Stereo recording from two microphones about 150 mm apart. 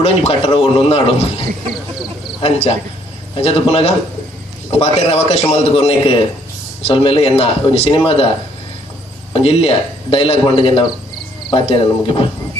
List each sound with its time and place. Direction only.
0.0 s a man's voice: 40° left (ahead or behind)
2.4 s a man's voice: 40° left (ahead or behind)
9.3 s a man's voice: 40° left (ahead or behind)